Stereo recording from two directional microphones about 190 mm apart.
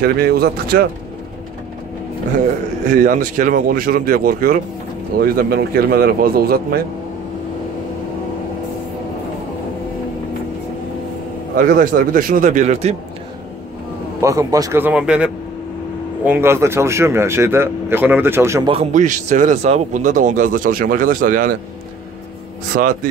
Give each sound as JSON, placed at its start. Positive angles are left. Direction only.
{"t": 0.0, "sound": "speech", "side_deg": -55}
{"t": 2.9, "sound": "speech", "side_deg": -40}
{"t": 11.5, "sound": "speech", "side_deg": -45}
{"t": 14.2, "sound": "speech", "side_deg": -15}
{"t": 18.7, "sound": "a man's voice", "side_deg": -35}
{"t": 22.7, "sound": "speech", "side_deg": -60}